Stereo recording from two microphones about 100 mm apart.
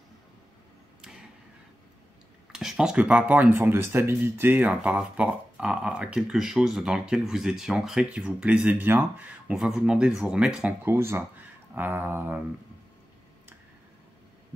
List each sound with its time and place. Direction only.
2.5 s speech: 5° right (ahead or behind); by 9.3 s 20° right (ahead or behind)
9.5 s speech: 5° right (ahead or behind)
10.9 s speech: 25° right (ahead or behind)